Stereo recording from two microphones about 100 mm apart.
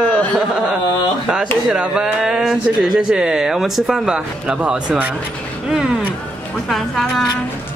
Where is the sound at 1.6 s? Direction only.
5° right (ahead or behind).